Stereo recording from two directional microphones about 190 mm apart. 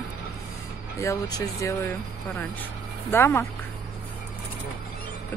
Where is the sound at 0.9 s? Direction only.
15° left (ahead or behind).